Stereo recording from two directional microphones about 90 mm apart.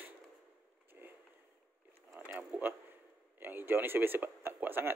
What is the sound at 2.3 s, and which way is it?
Speech, 15° right (ahead or behind).